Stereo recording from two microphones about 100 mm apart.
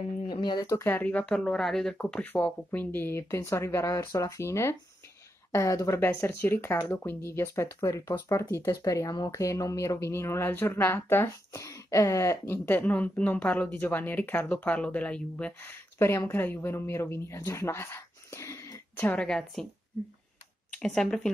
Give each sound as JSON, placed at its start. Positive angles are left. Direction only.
{"t": 0.3, "sound": "speech", "side_deg": 50}
{"t": 0.7, "sound": "speech", "side_deg": 25}
{"t": 11.5, "sound": "speech", "side_deg": 35}
{"t": 18.9, "sound": "speech", "side_deg": 15}
{"t": 20.7, "sound": "speech", "side_deg": 5}